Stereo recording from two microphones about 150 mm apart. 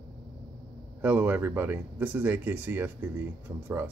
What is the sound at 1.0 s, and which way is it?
Speech, 10° right (ahead or behind).